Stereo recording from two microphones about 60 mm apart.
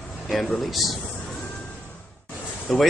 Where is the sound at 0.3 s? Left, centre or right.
Centre.